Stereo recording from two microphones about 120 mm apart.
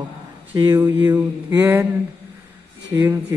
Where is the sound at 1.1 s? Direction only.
15° right (ahead or behind).